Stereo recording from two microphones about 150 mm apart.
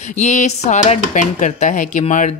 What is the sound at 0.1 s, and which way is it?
Speech, 55° left (ahead or behind).